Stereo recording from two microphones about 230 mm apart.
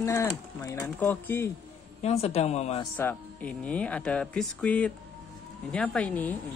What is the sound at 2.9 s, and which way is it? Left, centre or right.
Speech, centre.